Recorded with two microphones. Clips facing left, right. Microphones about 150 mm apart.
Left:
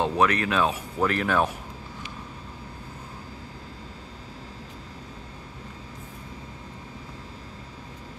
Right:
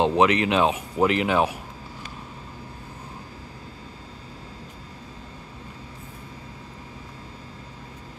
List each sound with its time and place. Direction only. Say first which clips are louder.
0.0 s speech: right 4 dB; 20° right (ahead or behind)